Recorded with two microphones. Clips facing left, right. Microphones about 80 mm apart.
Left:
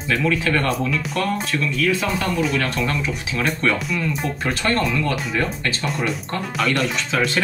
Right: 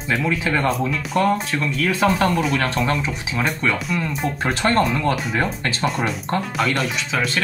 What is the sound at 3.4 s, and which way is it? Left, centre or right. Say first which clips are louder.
Speech: left 1 dB; centre.